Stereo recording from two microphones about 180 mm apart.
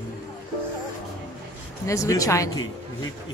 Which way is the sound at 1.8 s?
15° left (ahead or behind).